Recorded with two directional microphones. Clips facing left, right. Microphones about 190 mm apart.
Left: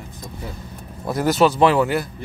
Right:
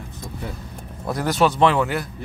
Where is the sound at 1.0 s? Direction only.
5° left (ahead or behind).